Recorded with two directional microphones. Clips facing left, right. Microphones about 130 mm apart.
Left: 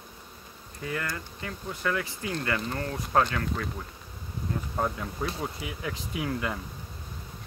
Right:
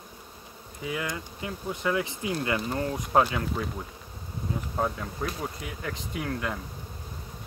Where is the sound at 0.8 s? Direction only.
10° right (ahead or behind).